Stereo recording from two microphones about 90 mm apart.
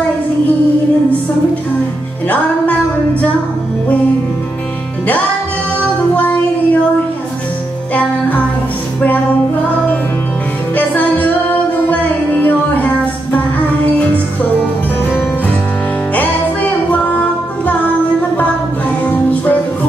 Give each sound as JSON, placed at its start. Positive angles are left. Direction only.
{"t": 5.8, "sound": "music", "side_deg": 15}
{"t": 7.9, "sound": "music", "side_deg": 15}
{"t": 10.7, "sound": "music", "side_deg": 20}